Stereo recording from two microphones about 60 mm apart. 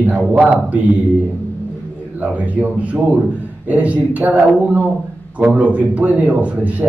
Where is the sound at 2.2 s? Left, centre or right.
Right.